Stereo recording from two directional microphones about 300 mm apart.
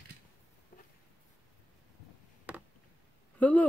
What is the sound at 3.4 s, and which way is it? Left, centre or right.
Speech, centre.